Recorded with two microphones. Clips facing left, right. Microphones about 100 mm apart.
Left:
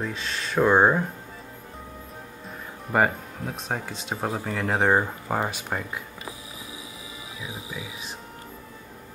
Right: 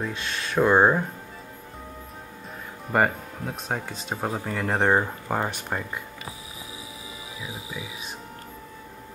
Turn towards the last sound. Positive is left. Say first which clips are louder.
# even
turn(degrees=-20)  # may be behind; listen again after turning